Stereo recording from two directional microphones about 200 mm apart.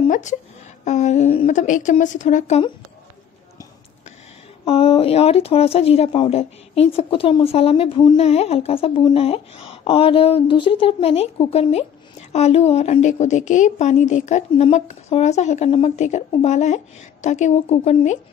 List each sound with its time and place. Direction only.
0.0 s a sound: 35° left (ahead or behind)
0.8 s speech: 35° left (ahead or behind)
4.6 s speech: 30° left (ahead or behind)